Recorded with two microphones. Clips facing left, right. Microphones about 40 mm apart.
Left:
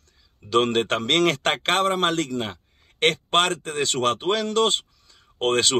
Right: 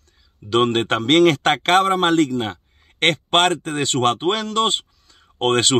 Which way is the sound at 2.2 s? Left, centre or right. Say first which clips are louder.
Right 7 dB; centre.